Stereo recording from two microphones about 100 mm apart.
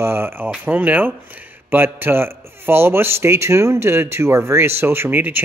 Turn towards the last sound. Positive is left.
turn(degrees=-20)  # may be behind; listen again after turning